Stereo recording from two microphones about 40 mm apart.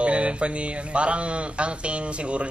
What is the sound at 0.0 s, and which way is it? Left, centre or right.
Speech, right.